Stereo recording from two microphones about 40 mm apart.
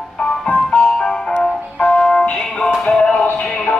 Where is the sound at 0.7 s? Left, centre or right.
Left.